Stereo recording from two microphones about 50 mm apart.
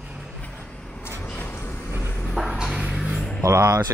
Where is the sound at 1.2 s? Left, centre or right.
Left.